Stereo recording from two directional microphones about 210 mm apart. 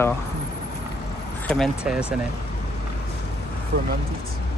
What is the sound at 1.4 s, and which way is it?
Speech, centre (ahead or behind).